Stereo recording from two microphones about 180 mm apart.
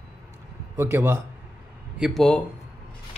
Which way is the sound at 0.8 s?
15° right (ahead or behind).